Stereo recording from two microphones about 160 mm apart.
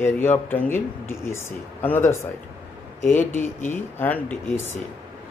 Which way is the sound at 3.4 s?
15° left (ahead or behind).